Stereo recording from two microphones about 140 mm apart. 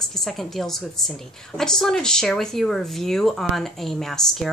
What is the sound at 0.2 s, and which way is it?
Speech, centre (ahead or behind).